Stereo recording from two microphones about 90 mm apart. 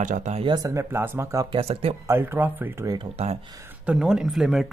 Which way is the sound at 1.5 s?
90° right.